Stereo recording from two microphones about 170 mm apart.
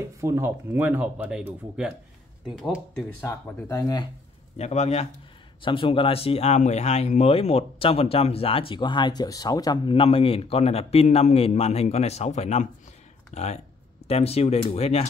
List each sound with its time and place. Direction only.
0.0 s speech: 15° right (ahead or behind); by 3.0 s centre (ahead or behind)
3.0 s speech: 15° left (ahead or behind)
4.6 s speech: 40° left (ahead or behind)